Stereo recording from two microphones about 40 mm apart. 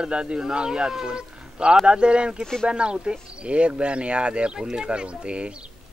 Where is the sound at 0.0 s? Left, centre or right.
Right.